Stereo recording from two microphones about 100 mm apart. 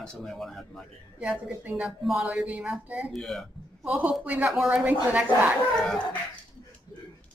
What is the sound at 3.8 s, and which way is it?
A man's voice, 15° right (ahead or behind).